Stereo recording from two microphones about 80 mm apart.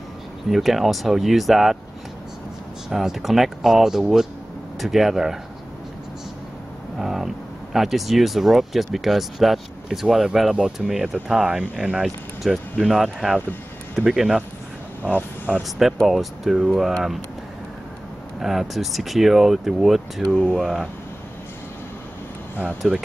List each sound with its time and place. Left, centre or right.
0.5 s speech: centre
2.9 s speech: centre
7.0 s a sound: centre
7.7 s speech: centre
15.8 s speech: centre
18.4 s speech: centre
22.8 s speech: centre